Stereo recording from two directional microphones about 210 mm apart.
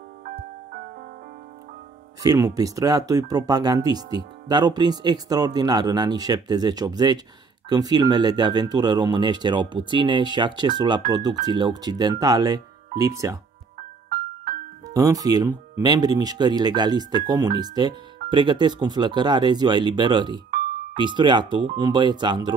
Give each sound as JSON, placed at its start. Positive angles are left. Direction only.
{"t": 0.2, "sound": "music", "side_deg": -40}
{"t": 2.2, "sound": "speech", "side_deg": -15}
{"t": 14.0, "sound": "music", "side_deg": -40}
{"t": 15.0, "sound": "speech", "side_deg": -15}